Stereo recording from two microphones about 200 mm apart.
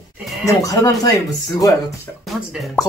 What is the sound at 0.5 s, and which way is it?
Speech, 15° left (ahead or behind).